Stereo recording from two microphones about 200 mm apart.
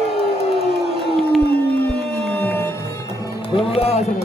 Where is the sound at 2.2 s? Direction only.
10° left (ahead or behind).